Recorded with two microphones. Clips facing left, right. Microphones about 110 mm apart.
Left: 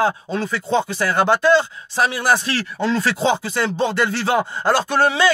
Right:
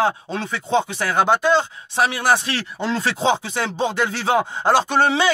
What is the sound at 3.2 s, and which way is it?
Speech, 15° right (ahead or behind).